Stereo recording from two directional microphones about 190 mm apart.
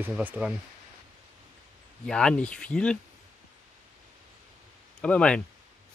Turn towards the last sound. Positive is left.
turn(degrees=5)  # may be behind; listen again after turning